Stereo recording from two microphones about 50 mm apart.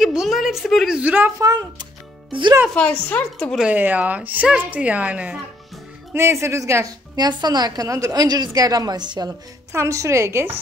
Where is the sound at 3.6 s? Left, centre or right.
Right.